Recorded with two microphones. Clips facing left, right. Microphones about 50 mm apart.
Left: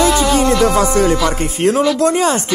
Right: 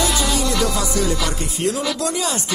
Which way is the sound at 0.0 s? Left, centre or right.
Left.